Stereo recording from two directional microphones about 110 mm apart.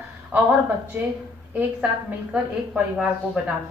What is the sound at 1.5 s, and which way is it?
A woman's voice, 15° right (ahead or behind).